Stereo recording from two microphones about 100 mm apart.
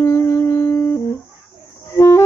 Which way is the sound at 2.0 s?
30° left (ahead or behind).